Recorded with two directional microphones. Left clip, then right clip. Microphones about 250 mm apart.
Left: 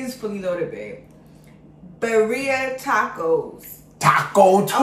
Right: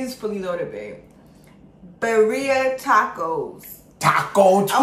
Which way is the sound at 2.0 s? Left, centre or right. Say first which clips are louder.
Right 1 dB; centre.